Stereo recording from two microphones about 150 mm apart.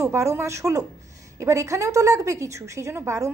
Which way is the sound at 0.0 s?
20° right (ahead or behind).